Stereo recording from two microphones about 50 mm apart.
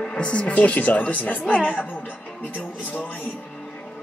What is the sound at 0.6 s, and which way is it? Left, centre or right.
Speech, left.